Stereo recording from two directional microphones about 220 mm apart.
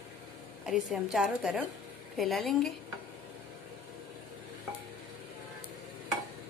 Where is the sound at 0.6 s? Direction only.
Centre (ahead or behind).